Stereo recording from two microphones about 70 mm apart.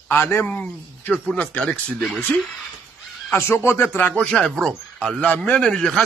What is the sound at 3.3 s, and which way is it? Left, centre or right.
Speech, left.